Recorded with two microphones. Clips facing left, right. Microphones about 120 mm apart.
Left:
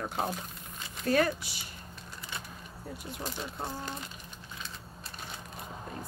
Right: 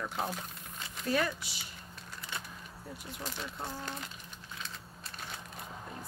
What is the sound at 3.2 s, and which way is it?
Speech, 15° left (ahead or behind).